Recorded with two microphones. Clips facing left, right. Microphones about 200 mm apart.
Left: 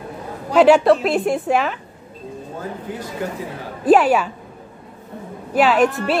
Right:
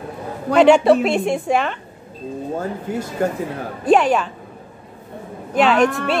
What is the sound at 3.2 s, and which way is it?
Speech, 50° right (ahead or behind).